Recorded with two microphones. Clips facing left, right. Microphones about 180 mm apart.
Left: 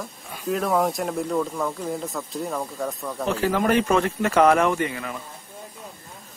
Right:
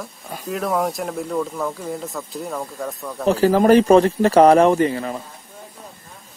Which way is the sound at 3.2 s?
35° right (ahead or behind).